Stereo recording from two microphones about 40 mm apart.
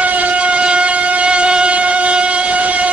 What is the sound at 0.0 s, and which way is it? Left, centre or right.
Train, right.